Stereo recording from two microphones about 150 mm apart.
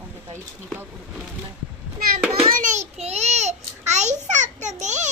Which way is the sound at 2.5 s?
55° right (ahead or behind).